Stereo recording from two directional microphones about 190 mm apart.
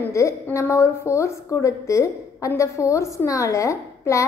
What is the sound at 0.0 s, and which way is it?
A woman's voice, 15° left (ahead or behind).